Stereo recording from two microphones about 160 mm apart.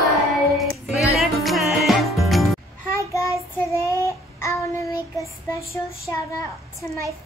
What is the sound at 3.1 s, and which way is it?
Child singing, 20° left (ahead or behind).